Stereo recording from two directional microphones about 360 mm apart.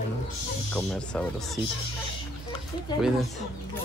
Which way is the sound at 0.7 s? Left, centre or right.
Centre.